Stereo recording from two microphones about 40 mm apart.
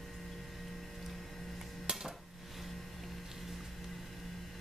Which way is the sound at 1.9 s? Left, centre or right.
Right.